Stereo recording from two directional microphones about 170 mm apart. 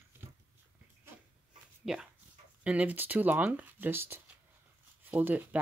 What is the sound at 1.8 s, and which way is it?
Speech, centre (ahead or behind).